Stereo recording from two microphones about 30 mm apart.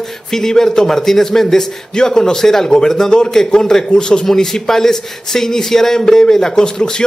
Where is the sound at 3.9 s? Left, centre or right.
Left.